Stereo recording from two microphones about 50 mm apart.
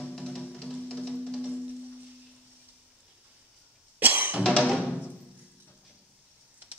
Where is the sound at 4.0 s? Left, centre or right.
Right.